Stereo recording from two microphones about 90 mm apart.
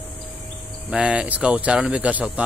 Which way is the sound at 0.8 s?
10° right (ahead or behind).